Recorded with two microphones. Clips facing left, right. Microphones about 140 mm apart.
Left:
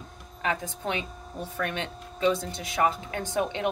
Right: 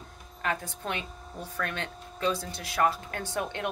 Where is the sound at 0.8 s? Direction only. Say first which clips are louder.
Left 3 dB; 15° left (ahead or behind).